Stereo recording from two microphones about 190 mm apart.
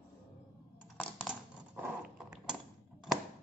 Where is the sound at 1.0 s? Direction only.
Centre (ahead or behind).